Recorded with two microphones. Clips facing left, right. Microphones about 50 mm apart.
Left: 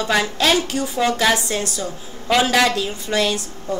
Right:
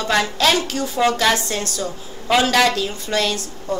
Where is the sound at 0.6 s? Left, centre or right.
Centre.